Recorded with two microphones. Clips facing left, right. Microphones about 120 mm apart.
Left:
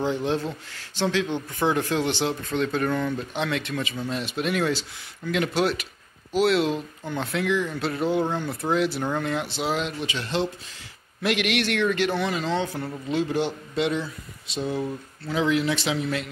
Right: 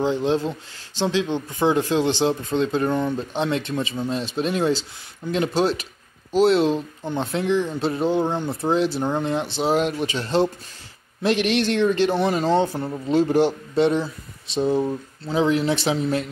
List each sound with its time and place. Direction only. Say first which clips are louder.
0.0 s speech: right 4 dB; 25° right (ahead or behind)
9.6 s speech: right 6 dB; 40° right (ahead or behind)
12.2 s speech: right 6 dB; 45° right (ahead or behind)
12.6 s speech: right 4 dB; 25° right (ahead or behind)
13.1 s speech: right 7 dB; 40° right (ahead or behind)